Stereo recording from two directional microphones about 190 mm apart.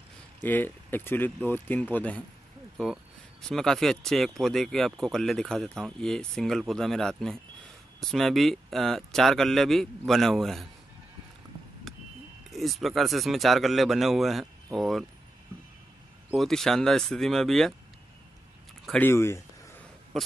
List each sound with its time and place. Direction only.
0.4 s speech: 10° left (ahead or behind)
3.4 s speech: 5° left (ahead or behind)
11.9 s a sound: centre (ahead or behind)
12.4 s speech: centre (ahead or behind)
16.3 s speech: centre (ahead or behind)
18.9 s speech: 10° left (ahead or behind)
20.1 s speech: centre (ahead or behind)